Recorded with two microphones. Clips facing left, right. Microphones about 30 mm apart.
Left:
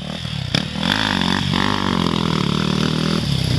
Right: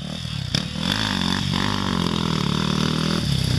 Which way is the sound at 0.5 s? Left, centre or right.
Left.